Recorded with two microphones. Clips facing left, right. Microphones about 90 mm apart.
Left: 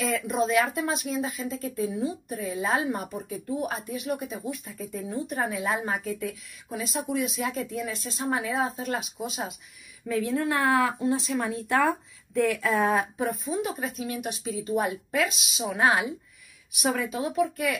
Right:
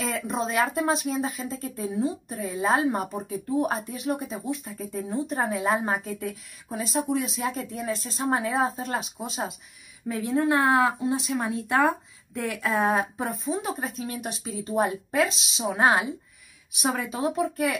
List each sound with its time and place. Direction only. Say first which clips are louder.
0.0 s speech: left 2 dB; 35° right (ahead or behind)